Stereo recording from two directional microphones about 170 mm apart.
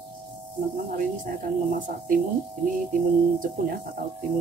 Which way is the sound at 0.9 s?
55° right (ahead or behind).